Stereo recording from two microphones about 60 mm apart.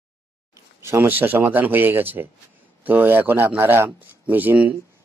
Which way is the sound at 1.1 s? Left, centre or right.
Right.